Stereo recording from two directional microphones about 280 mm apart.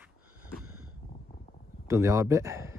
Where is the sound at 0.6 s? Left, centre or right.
Right.